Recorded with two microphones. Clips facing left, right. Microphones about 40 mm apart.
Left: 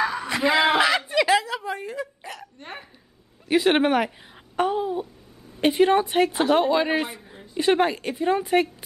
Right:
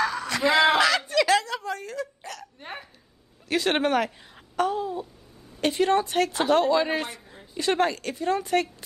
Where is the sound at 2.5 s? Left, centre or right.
Centre.